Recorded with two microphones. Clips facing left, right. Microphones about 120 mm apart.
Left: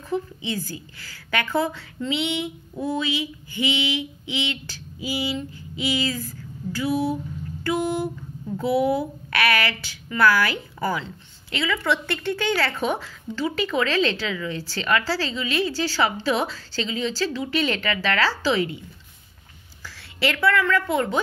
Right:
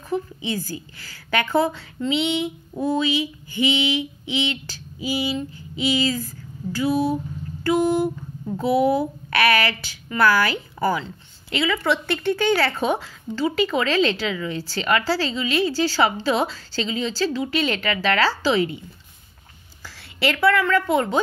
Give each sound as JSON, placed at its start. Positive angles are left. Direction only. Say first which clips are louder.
{"t": 0.1, "sound": "a woman's voice", "louder": "right 1 dB", "side_deg": -10}
{"t": 7.6, "sound": "a sound", "louder": "right 5 dB", "side_deg": -15}
{"t": 9.6, "sound": "a woman's voice", "louder": "right 2 dB", "side_deg": -15}
{"t": 19.8, "sound": "a woman's voice", "louder": "right 1 dB", "side_deg": -15}